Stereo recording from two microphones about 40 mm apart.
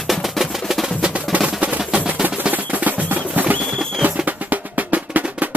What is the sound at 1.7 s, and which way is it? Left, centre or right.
Music, right.